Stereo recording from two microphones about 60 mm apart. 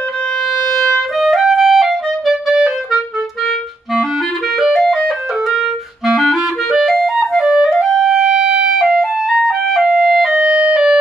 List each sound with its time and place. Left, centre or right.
0.7 s clarinet: centre
4.6 s music: centre
6.0 s clarinet: centre
10.4 s music: centre